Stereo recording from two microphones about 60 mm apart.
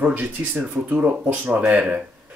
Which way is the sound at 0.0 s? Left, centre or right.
Right.